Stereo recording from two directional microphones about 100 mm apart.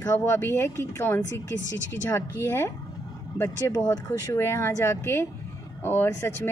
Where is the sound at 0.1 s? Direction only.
25° left (ahead or behind).